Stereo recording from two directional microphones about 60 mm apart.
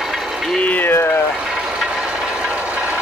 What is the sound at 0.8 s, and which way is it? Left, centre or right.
Speech, left.